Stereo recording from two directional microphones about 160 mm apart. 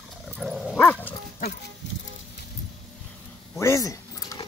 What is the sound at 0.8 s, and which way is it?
Dog, 10° left (ahead or behind).